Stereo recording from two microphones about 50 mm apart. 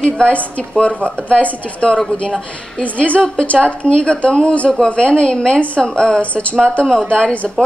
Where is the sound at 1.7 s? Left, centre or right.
Left.